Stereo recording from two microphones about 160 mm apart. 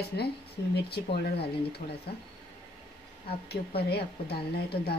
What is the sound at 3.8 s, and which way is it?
Speech, 90° left.